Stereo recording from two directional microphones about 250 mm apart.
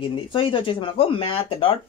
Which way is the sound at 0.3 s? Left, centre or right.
Centre.